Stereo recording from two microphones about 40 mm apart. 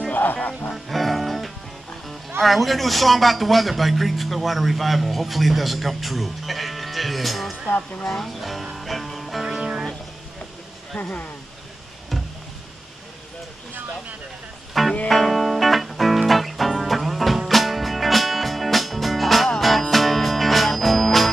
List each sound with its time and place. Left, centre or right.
0.1 s music: left
0.8 s music: centre
2.4 s a man's voice: centre
8.7 s music: centre
9.6 s music: right
11.0 s speech: left
14.7 s music: centre